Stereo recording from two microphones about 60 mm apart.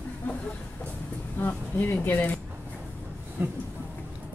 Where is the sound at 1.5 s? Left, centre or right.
Left.